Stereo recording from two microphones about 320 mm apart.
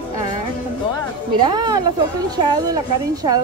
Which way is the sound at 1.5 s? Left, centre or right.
Centre.